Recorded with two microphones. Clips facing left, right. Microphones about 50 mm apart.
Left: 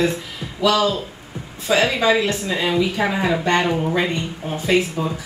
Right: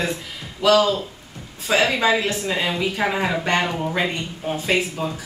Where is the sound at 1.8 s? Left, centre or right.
Centre.